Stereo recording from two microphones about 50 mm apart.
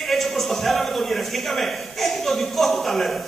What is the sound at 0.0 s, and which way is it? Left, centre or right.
A man's voice, centre.